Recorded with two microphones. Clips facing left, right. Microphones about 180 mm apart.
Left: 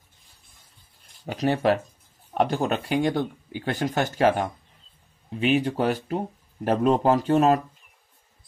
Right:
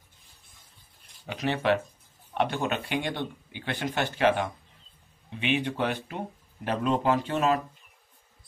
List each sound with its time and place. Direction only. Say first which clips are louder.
1.2 s speech: left 5 dB; 40° left (ahead or behind)